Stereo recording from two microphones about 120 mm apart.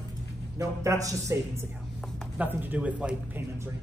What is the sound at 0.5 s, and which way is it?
Speech, 25° right (ahead or behind).